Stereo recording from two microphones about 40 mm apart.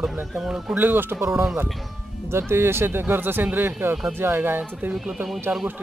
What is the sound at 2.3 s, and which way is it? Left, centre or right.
Speech, right.